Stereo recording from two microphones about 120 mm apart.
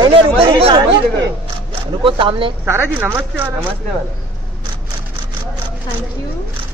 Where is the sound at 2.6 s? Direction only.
20° right (ahead or behind).